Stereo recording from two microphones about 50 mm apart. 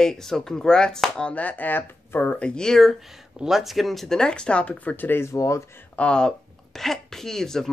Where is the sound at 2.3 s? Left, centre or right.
Centre.